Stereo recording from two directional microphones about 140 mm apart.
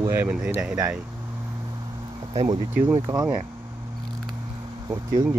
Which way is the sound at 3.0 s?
20° right (ahead or behind).